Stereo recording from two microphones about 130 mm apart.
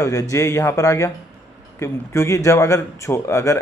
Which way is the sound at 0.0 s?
25° left (ahead or behind).